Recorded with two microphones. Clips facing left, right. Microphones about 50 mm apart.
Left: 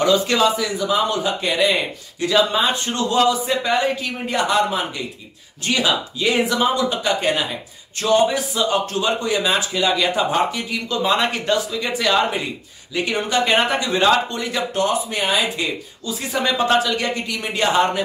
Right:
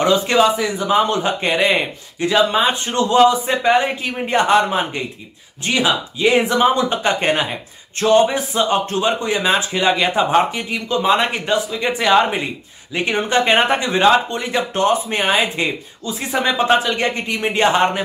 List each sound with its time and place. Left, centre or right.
0.0 s speech: right
5.7 s speech: right